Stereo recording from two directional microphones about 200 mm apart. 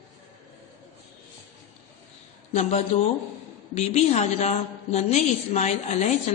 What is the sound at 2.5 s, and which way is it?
A woman's voice, 35° left (ahead or behind).